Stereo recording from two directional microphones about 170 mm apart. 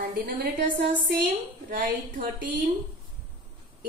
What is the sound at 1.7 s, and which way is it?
Speech, 55° right (ahead or behind).